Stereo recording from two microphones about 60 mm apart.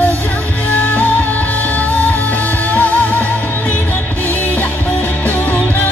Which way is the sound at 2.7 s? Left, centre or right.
Left.